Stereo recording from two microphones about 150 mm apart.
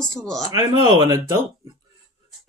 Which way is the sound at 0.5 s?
25° right (ahead or behind).